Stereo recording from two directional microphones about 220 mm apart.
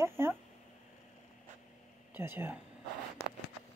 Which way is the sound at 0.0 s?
10° right (ahead or behind).